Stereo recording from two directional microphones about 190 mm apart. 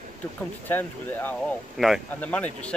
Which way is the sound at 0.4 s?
10° left (ahead or behind).